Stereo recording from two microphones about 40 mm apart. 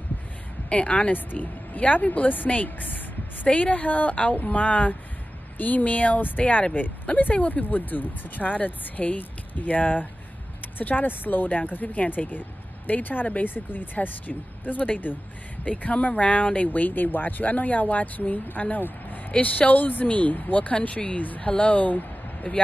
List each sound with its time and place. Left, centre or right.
0.7 s a woman's voice: left
1.1 s a woman's voice: left
20.9 s speech: left
21.2 s speech: left
21.5 s speech: left